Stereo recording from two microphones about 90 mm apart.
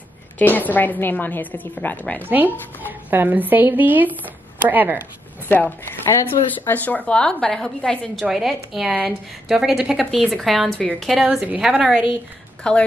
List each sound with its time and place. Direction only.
0.4 s a woman's voice: 20° left (ahead or behind)
2.2 s a woman's voice: 20° right (ahead or behind)
5.5 s a woman's voice: 25° left (ahead or behind); by 10.8 s centre (ahead or behind)
10.8 s speech: 15° left (ahead or behind)
11.4 s a woman's voice: 15° right (ahead or behind)
12.6 s speech: 10° left (ahead or behind)